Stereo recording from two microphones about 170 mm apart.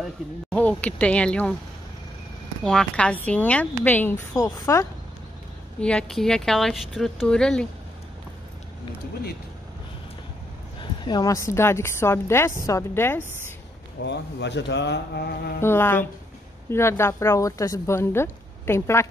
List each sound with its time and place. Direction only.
0.5 s a woman's voice: 10° left (ahead or behind)
2.6 s a woman's voice: 5° left (ahead or behind); by 4.8 s 20° left (ahead or behind)
5.8 s speech: 5° left (ahead or behind)
10.8 s a woman's voice: 25° left (ahead or behind)
14.0 s speech: 90° left; by 15.5 s 70° left (ahead or behind)
15.6 s a woman's voice: 15° left (ahead or behind)